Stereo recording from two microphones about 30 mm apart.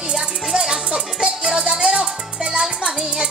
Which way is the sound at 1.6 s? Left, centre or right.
Right.